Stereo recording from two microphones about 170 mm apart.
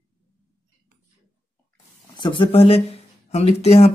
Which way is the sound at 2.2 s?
30° left (ahead or behind).